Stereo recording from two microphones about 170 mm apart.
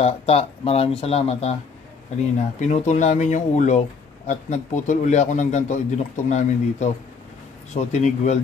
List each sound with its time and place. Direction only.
0.0 s speech: 35° left (ahead or behind)
2.6 s a man's voice: 45° left (ahead or behind)